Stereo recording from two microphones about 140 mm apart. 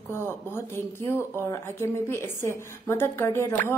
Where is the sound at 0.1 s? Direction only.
15° left (ahead or behind).